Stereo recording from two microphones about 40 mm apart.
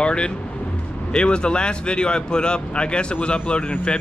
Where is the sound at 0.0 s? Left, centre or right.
Left.